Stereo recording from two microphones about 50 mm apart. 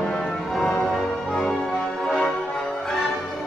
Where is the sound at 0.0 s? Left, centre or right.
Centre.